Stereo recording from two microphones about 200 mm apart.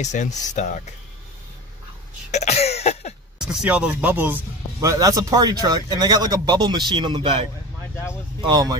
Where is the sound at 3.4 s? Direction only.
5° right (ahead or behind).